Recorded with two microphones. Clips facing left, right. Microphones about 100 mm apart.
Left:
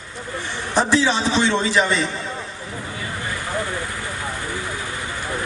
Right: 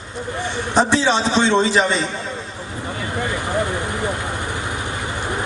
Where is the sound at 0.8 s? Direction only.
25° right (ahead or behind).